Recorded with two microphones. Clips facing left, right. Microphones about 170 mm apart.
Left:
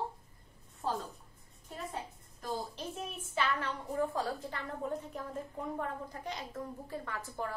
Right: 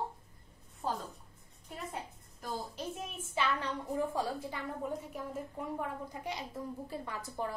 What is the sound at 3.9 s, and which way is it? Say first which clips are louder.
A woman's voice: left 1 dB; 15° right (ahead or behind).